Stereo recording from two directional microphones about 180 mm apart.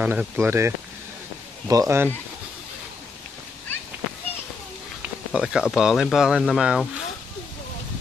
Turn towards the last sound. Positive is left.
turn(degrees=-5)  # may be behind; listen again after turning